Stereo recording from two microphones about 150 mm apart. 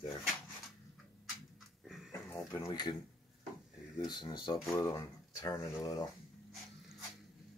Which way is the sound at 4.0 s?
30° left (ahead or behind).